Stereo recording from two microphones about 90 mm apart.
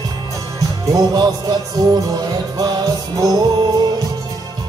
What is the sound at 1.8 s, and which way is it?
Music, 60° right (ahead or behind).